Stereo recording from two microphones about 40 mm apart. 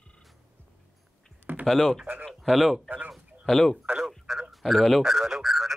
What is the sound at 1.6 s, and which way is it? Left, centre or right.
Speech, centre.